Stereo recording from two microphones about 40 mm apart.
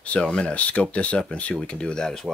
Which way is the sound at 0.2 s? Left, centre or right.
Left.